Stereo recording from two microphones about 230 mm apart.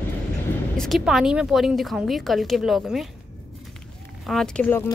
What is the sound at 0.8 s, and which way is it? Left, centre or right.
Speech, centre.